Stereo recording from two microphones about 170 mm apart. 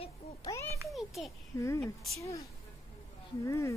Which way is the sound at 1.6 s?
15° left (ahead or behind).